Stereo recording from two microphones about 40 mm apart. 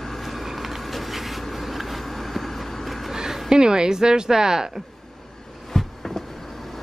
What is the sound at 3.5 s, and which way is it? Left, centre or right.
Speech, centre.